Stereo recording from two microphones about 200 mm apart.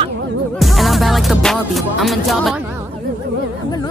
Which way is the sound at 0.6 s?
Centre (ahead or behind).